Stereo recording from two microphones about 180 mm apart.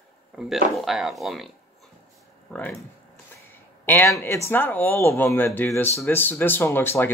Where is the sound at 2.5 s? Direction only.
10° left (ahead or behind).